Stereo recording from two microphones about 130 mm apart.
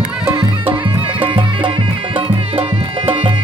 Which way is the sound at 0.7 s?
40° right (ahead or behind).